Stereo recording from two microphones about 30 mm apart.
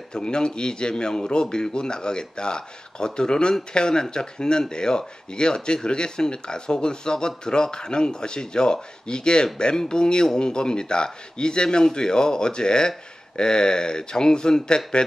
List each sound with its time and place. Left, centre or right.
0.1 s speech: left